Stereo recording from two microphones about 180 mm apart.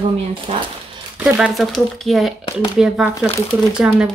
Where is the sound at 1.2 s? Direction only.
5° right (ahead or behind).